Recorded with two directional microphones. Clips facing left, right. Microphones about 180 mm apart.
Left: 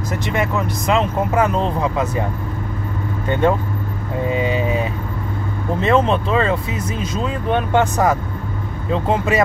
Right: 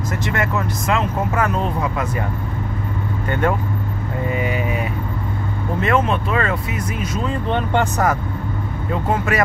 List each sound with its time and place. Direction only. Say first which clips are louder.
0.3 s speech: left 2 dB; 20° left (ahead or behind)
3.3 s speech: left 3 dB; 25° left (ahead or behind)
7.4 s speech: left 4 dB; 10° left (ahead or behind)
8.9 s speech: left 3 dB; 25° left (ahead or behind)